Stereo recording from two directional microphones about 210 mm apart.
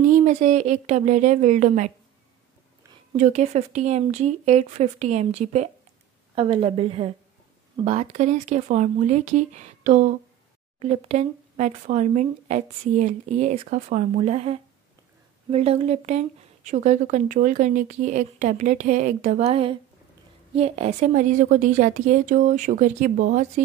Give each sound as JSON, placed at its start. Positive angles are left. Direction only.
{"t": 0.1, "sound": "speech", "side_deg": -35}
{"t": 3.2, "sound": "a woman's voice", "side_deg": -35}